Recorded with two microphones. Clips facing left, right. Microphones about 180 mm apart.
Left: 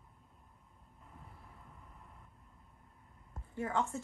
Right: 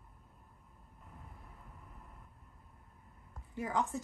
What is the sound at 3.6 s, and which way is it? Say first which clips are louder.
Speech: even; centre (ahead or behind).